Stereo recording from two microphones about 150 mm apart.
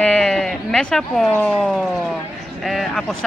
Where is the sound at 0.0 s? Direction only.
5° left (ahead or behind).